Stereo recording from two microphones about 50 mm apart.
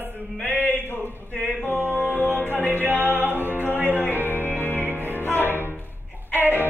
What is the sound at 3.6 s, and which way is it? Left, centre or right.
Music, right.